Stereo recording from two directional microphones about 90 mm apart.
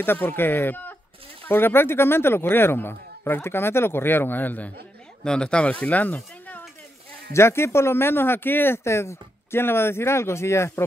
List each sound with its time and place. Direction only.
0.0 s speech: 25° left (ahead or behind)
7.3 s speech: 30° left (ahead or behind)